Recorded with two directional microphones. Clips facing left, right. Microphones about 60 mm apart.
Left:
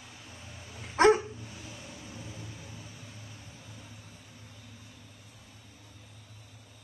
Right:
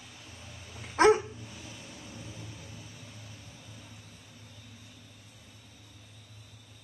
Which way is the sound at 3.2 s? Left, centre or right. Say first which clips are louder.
Left 1 dB; left.